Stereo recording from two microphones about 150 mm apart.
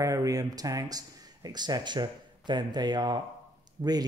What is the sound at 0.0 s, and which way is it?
Speech, 20° right (ahead or behind).